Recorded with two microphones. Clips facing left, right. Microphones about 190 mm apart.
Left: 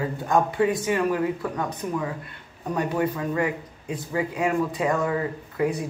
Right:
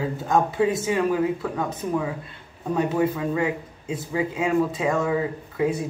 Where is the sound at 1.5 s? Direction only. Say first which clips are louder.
Right 2 dB; 5° right (ahead or behind).